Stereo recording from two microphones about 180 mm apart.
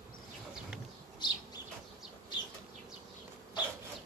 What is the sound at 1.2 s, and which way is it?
Bird, 25° left (ahead or behind).